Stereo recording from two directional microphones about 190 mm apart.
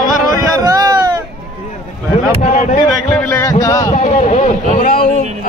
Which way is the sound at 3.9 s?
35° left (ahead or behind).